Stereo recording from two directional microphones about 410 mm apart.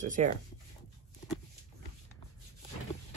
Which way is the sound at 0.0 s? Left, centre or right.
Centre.